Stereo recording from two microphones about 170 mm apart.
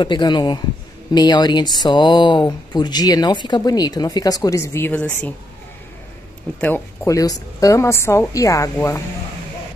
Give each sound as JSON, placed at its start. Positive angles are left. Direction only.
{"t": 0.0, "sound": "speech", "side_deg": 25}
{"t": 6.6, "sound": "a woman's voice", "side_deg": 15}